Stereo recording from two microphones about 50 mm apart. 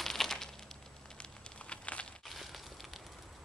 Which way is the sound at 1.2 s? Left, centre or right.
Left.